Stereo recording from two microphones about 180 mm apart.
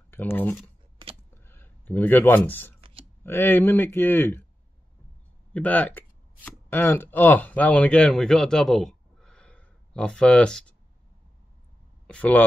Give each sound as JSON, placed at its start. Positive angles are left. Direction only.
{"t": 0.1, "sound": "speech", "side_deg": 10}
{"t": 1.3, "sound": "a sound", "side_deg": 10}
{"t": 2.8, "sound": "a sound", "side_deg": -30}
{"t": 3.3, "sound": "speech", "side_deg": 10}
{"t": 5.5, "sound": "speech", "side_deg": 10}
{"t": 12.1, "sound": "speech", "side_deg": 10}